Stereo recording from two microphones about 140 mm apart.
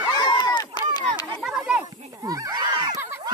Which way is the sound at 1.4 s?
5° right (ahead or behind).